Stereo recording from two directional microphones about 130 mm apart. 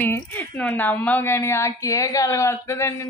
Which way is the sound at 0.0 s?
15° left (ahead or behind).